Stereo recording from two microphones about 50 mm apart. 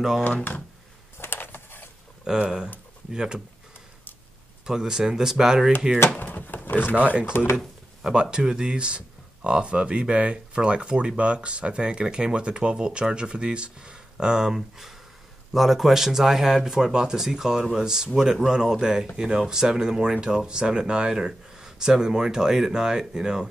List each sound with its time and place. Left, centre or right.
0.2 s speech: left
1.2 s a sound: left
2.2 s speech: centre
4.6 s speech: centre
6.1 s drawer open or close: left
7.0 s speech: right
7.2 s speech: left
7.5 s speech: centre